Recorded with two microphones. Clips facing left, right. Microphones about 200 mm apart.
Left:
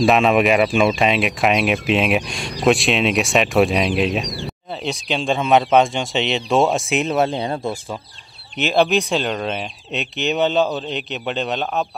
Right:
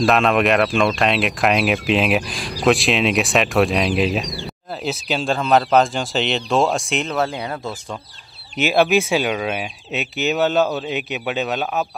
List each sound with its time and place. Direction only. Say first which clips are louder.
0.0 s speech: left 2 dB; centre (ahead or behind)
7.2 s speech: left 3 dB; 20° left (ahead or behind)
8.5 s speech: right 1 dB; 5° right (ahead or behind)